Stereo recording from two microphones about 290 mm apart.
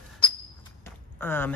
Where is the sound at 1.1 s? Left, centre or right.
Centre.